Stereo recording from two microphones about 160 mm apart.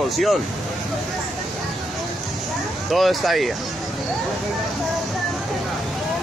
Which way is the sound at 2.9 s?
Centre (ahead or behind).